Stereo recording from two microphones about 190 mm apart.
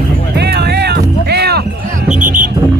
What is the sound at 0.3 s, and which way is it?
Music, 60° right (ahead or behind).